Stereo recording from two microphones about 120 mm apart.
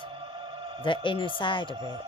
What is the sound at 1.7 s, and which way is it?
Speech, 40° right (ahead or behind).